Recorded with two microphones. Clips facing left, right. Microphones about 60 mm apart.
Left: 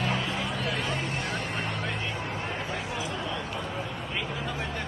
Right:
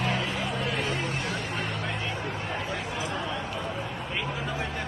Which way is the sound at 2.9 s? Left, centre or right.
Right.